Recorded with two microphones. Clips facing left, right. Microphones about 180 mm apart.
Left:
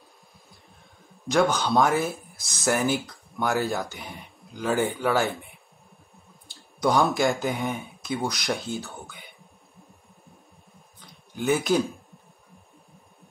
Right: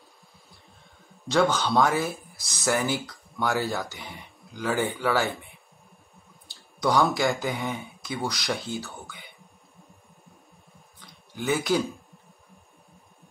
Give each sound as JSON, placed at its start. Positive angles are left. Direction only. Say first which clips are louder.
{"t": 1.3, "sound": "speech", "louder": "left 1 dB", "side_deg": 15}
{"t": 6.8, "sound": "speech", "louder": "left 1 dB", "side_deg": 15}
{"t": 11.0, "sound": "a sound", "louder": "left 3 dB", "side_deg": 15}